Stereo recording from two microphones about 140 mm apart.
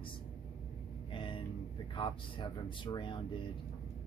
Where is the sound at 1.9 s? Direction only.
35° left (ahead or behind).